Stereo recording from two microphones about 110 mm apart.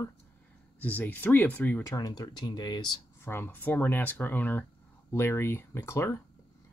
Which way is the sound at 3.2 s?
20° left (ahead or behind).